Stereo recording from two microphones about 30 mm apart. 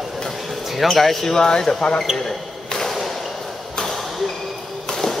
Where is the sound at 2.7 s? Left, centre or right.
Centre.